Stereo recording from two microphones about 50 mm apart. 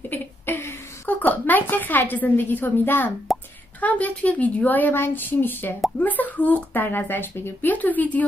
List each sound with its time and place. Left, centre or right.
0.5 s a sound: left
1.0 s a woman's voice: left
3.3 s plop: centre
3.8 s speech: left
5.9 s speech: left
7.7 s speech: left